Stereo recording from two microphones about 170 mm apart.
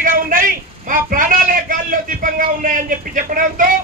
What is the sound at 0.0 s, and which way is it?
A man's voice, 55° right (ahead or behind).